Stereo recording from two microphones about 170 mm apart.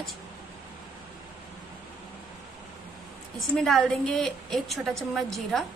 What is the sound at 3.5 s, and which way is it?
A woman's voice, centre (ahead or behind).